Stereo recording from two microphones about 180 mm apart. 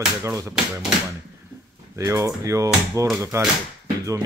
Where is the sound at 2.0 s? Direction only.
15° right (ahead or behind).